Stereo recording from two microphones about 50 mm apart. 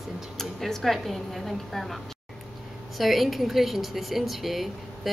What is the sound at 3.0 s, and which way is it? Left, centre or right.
Speech, centre.